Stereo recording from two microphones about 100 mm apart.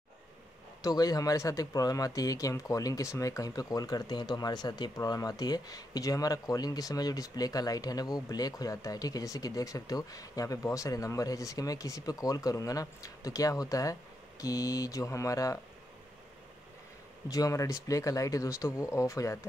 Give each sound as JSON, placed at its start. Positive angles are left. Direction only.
{"t": 0.8, "sound": "speech", "side_deg": 40}
{"t": 17.3, "sound": "speech", "side_deg": 35}